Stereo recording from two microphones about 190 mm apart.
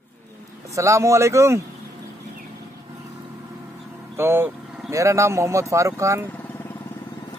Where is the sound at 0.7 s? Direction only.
15° right (ahead or behind).